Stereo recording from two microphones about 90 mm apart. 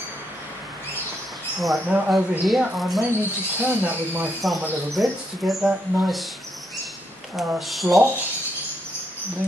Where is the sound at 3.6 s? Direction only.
20° right (ahead or behind).